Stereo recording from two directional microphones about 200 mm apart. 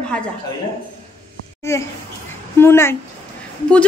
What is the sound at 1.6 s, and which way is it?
A woman's voice, 15° left (ahead or behind).